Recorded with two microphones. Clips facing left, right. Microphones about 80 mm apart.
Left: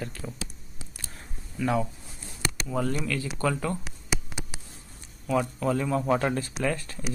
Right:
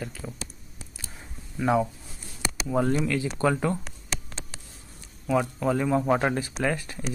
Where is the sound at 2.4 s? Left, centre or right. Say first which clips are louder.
Right 1 dB; centre.